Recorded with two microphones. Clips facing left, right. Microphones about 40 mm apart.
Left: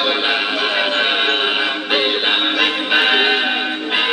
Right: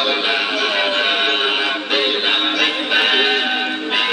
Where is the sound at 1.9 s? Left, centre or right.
Centre.